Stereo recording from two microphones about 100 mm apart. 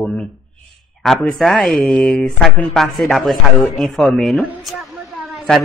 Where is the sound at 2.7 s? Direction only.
5° left (ahead or behind).